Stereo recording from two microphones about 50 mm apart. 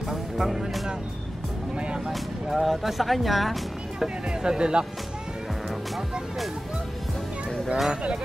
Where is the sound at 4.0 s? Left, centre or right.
Centre.